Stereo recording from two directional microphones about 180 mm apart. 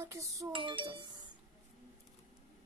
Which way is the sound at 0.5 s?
30° right (ahead or behind).